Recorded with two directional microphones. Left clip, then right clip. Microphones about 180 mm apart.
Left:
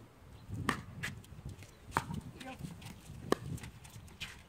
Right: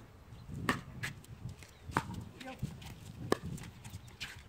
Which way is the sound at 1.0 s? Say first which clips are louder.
Even; 5° left (ahead or behind).